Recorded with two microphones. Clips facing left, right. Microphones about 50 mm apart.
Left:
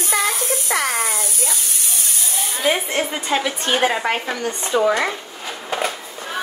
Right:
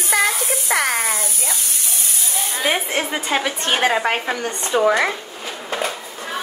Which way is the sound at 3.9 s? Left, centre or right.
Centre.